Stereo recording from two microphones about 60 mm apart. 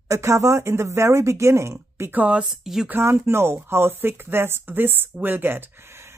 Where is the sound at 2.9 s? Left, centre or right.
Right.